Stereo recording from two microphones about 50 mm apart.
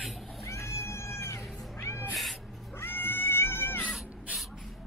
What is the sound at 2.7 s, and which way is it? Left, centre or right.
Cat, left.